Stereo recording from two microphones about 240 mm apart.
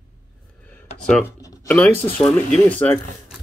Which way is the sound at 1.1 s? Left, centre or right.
Centre.